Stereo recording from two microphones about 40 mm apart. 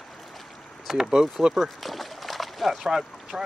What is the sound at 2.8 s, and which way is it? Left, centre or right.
Speech, centre.